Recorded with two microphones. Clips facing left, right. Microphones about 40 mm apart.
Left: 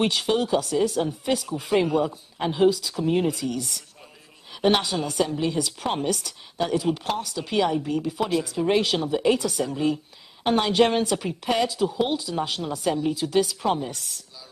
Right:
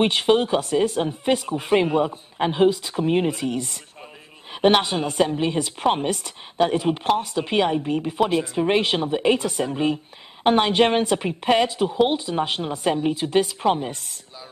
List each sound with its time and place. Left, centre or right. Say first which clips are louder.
0.0 s a woman's voice: right 4 dB; right